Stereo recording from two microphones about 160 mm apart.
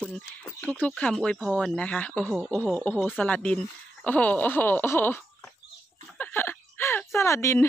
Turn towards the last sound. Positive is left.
turn(degrees=20)  # may be behind; listen again after turning